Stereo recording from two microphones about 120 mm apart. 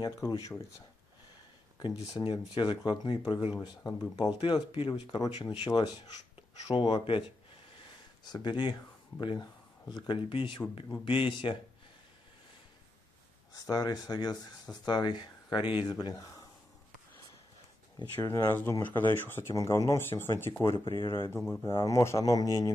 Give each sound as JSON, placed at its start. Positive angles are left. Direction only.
{"t": 0.0, "sound": "speech", "side_deg": 30}
{"t": 1.8, "sound": "speech", "side_deg": 40}
{"t": 6.7, "sound": "speech", "side_deg": 40}
{"t": 13.7, "sound": "speech", "side_deg": 30}
{"t": 18.2, "sound": "speech", "side_deg": 20}